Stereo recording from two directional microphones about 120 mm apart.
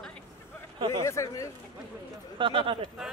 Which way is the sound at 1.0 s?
25° left (ahead or behind).